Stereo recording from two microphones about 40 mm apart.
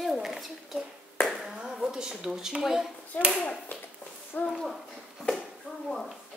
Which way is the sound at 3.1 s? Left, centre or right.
Left.